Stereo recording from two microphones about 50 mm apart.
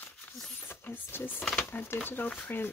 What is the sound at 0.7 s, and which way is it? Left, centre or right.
Speech, left.